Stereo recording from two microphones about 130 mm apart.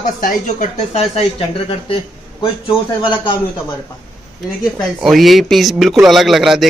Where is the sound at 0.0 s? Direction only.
90° left.